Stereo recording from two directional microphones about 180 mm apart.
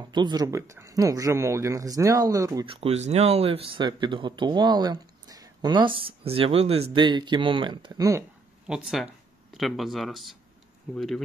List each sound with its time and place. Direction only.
0.1 s speech: 25° right (ahead or behind)
2.6 s speech: 30° right (ahead or behind)
8.6 s speech: 5° right (ahead or behind)